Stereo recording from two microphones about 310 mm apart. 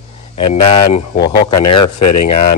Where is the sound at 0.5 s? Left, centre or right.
Centre.